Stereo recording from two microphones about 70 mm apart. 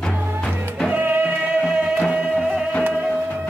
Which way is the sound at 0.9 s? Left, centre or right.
Right.